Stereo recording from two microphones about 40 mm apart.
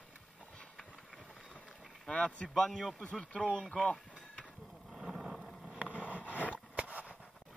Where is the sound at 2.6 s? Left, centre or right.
Centre.